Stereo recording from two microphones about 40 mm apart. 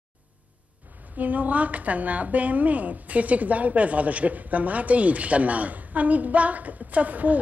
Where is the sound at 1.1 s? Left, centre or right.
Right.